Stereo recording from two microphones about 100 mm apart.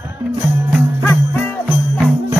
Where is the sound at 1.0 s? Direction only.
20° left (ahead or behind).